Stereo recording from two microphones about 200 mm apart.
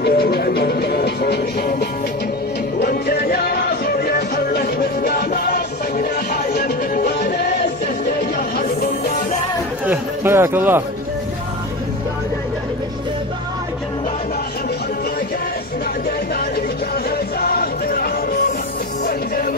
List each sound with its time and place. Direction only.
0.0 s music: 50° left (ahead or behind)
9.8 s speech: 10° right (ahead or behind)
17.4 s music: 50° left (ahead or behind)